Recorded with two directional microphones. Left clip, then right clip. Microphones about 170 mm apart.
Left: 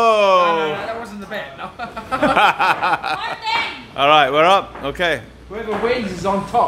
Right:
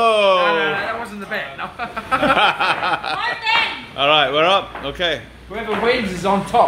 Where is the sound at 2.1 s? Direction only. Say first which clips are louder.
Left 1 dB; 15° left (ahead or behind).